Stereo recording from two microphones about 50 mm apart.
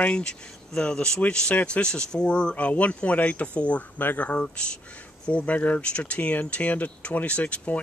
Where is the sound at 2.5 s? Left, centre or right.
Left.